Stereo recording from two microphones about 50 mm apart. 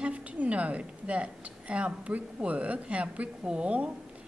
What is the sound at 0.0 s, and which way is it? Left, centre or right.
A woman's voice, right.